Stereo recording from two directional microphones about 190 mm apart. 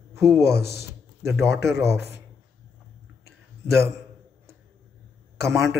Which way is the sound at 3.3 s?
15° right (ahead or behind).